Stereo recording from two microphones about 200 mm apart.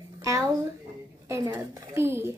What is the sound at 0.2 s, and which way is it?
A child's voice, 15° right (ahead or behind).